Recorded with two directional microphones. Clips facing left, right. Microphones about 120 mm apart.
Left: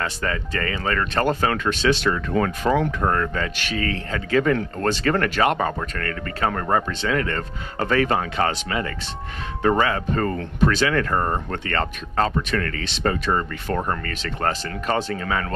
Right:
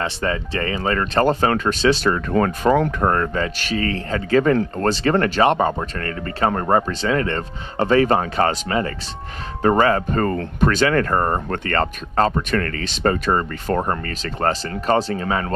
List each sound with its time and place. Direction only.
0.0 s speech: 25° right (ahead or behind)